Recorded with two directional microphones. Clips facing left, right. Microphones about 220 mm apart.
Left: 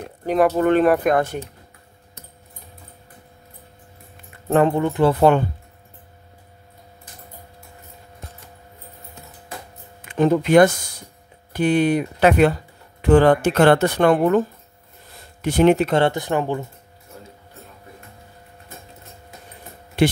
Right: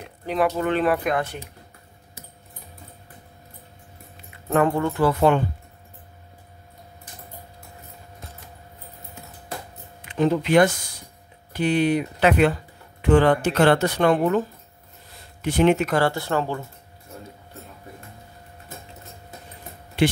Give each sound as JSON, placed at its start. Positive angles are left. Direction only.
{"t": 0.3, "sound": "speech", "side_deg": 45}
{"t": 4.5, "sound": "speech", "side_deg": 25}
{"t": 10.0, "sound": "speech", "side_deg": 50}
{"t": 15.4, "sound": "speech", "side_deg": 40}
{"t": 15.9, "sound": "speech", "side_deg": 20}